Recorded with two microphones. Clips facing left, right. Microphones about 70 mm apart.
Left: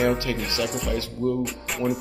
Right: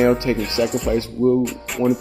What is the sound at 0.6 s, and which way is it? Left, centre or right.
Speech, centre.